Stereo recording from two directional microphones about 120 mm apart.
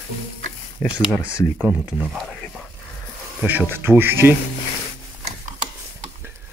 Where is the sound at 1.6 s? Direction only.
15° right (ahead or behind).